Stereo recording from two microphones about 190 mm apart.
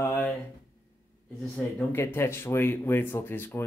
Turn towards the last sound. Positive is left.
turn(degrees=10)  # may be behind; listen again after turning